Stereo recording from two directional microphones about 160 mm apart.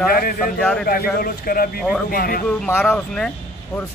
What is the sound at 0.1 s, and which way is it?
Speech, 70° left (ahead or behind).